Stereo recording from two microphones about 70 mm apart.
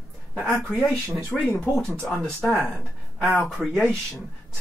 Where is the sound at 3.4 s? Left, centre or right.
Centre.